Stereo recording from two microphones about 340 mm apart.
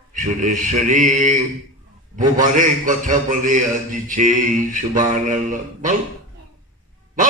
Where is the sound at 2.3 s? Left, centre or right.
Right.